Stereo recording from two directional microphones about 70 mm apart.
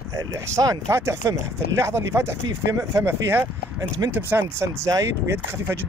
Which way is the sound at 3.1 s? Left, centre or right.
Right.